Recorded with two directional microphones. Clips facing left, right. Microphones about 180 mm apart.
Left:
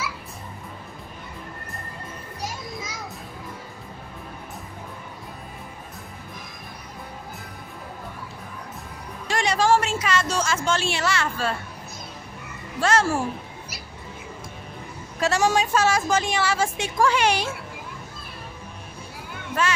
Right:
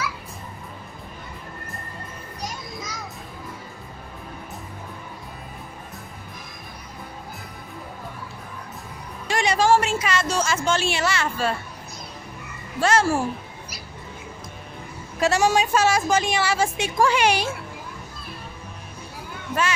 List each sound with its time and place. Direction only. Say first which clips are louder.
2.4 s children playing: left 1 dB; 5° left (ahead or behind)
9.3 s a woman's voice: right 1 dB; 10° right (ahead or behind)
12.8 s a woman's voice: right 1 dB; 10° right (ahead or behind)
15.1 s a woman's voice: right 2 dB; 10° right (ahead or behind)